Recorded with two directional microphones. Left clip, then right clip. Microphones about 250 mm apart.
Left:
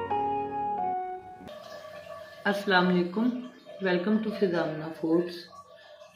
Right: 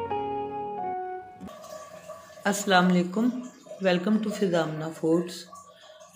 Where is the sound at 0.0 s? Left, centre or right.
Centre.